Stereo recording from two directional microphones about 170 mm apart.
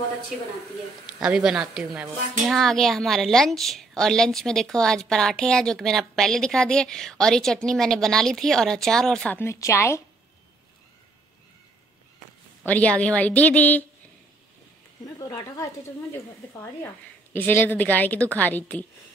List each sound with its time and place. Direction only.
1.2 s speech: 5° right (ahead or behind); by 10.0 s 15° left (ahead or behind)
12.6 s a woman's voice: 10° left (ahead or behind)
15.1 s a woman's voice: 20° left (ahead or behind)